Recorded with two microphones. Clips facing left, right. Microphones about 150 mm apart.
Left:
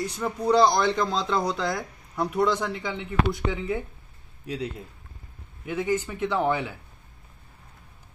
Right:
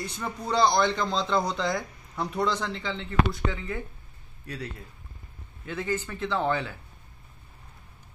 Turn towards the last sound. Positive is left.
turn(degrees=15)  # may be behind; listen again after turning